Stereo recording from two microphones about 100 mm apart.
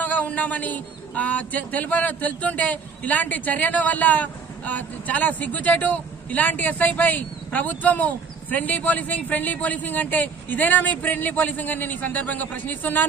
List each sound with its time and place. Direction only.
0.0 s speech: 15° left (ahead or behind)